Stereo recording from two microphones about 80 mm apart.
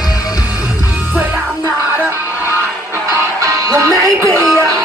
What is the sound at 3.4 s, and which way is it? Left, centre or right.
Music, right.